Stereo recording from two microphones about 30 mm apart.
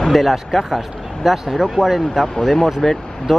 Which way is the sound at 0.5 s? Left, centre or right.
Centre.